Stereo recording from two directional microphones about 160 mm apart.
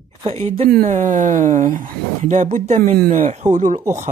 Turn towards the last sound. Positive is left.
turn(degrees=-50)  # may be behind; listen again after turning